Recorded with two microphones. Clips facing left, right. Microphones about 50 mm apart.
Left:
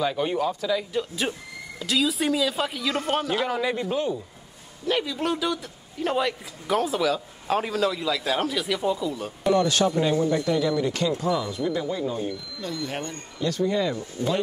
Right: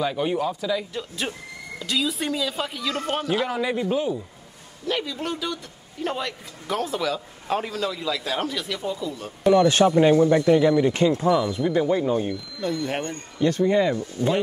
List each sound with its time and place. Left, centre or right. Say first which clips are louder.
0.0 s a man's voice: even; centre
9.7 s speech: right 6 dB; right